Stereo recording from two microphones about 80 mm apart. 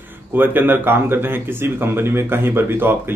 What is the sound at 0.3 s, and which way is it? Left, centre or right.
Speech, right.